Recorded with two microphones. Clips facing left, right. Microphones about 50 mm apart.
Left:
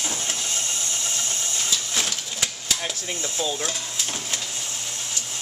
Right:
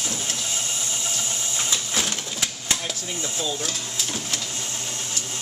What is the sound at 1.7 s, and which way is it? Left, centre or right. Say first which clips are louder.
Printer: right 1 dB; centre.